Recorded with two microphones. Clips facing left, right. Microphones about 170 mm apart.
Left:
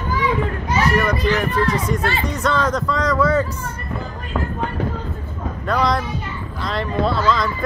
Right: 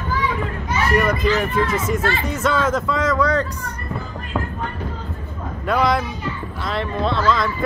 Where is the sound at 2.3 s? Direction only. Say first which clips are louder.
Right 1 dB; 5° right (ahead or behind).